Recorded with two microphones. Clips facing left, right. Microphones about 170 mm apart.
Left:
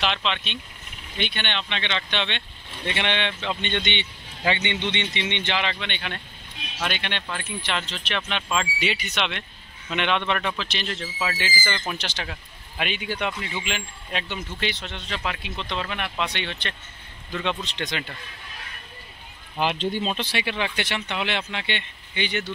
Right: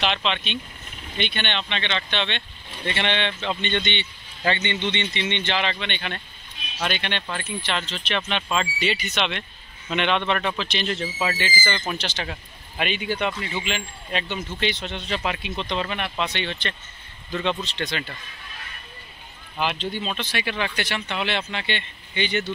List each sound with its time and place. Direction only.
0.1 s a man's voice: 5° left (ahead or behind)
10.9 s speech: 10° right (ahead or behind)
11.3 s speech: 10° left (ahead or behind)
12.0 s a man's voice: 10° left (ahead or behind)
16.3 s a man's voice: 10° left (ahead or behind)
19.6 s speech: 40° left (ahead or behind)
20.4 s a man's voice: 20° left (ahead or behind)